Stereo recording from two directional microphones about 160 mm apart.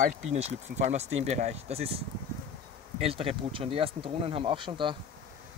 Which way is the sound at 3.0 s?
35° right (ahead or behind).